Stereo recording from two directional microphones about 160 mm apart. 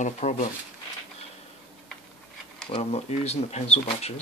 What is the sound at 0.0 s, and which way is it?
Speech, 45° left (ahead or behind).